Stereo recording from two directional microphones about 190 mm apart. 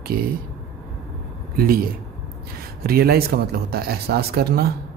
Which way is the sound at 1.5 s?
50° right (ahead or behind).